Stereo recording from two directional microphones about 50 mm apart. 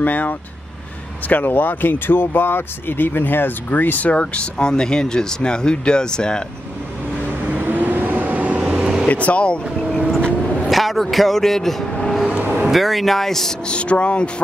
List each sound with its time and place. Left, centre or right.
0.0 s speech: left
4.1 s speech: left
7.6 s vehicle: right
9.1 s speech: left
9.9 s vehicle: centre
10.7 s speech: centre
12.6 s speech: centre
13.7 s speech: left